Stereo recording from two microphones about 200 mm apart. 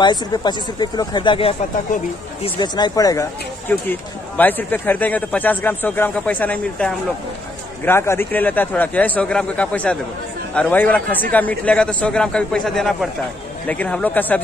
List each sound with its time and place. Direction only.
0.0 s a man's voice: 20° left (ahead or behind)